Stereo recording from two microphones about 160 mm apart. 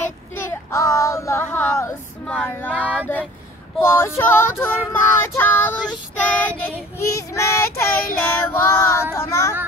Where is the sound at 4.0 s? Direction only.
15° left (ahead or behind).